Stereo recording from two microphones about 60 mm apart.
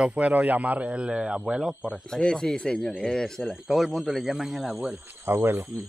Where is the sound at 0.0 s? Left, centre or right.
Right; by 1.8 s centre.